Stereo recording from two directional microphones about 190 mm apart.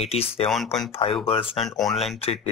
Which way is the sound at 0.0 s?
30° left (ahead or behind).